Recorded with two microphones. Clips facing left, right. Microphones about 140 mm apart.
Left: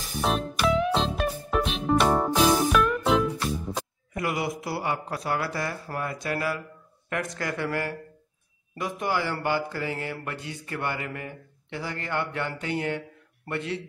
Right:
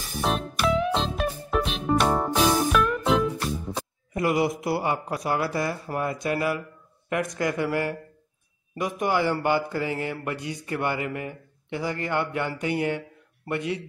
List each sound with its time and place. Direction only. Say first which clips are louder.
0.2 s music: even; centre (ahead or behind)
4.1 s a man's voice: right 5 dB; 25° right (ahead or behind)